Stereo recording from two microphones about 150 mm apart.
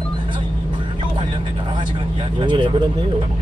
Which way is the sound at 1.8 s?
30° right (ahead or behind).